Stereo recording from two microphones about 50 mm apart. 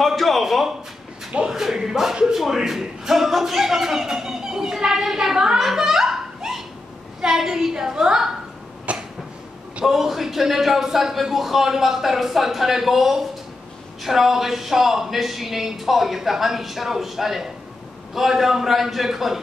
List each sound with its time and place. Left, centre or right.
0.0 s a man's voice: centre
8.9 s a sound: right
9.8 s a woman's voice: centre